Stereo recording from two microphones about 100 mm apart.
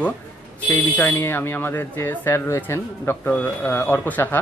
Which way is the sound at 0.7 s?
20° left (ahead or behind).